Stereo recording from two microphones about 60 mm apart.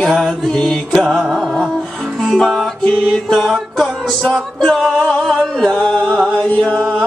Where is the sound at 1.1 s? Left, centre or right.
Centre.